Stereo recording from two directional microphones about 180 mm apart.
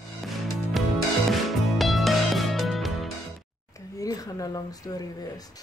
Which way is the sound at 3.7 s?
20° left (ahead or behind).